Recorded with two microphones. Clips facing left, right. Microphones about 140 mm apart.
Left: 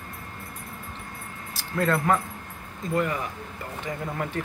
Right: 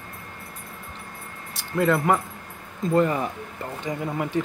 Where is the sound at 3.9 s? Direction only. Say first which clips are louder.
Right 4 dB; 20° right (ahead or behind).